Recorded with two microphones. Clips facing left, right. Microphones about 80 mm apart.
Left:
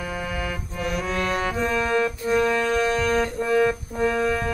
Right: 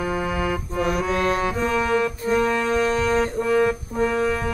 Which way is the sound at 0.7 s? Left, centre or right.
Right.